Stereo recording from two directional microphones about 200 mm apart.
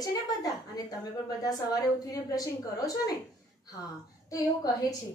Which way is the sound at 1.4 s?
20° left (ahead or behind).